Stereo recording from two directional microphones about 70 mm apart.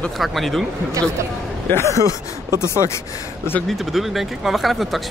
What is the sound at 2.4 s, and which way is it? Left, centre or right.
Speech, right.